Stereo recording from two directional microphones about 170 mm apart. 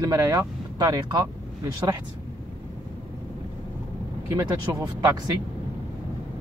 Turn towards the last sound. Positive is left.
turn(degrees=-15)  # may be behind; listen again after turning